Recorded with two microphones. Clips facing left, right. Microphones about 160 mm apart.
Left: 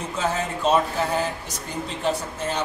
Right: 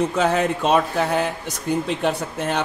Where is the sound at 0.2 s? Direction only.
65° right (ahead or behind).